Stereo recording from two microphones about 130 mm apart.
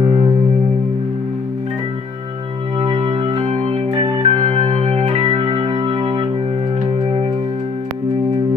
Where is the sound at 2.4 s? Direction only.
45° right (ahead or behind).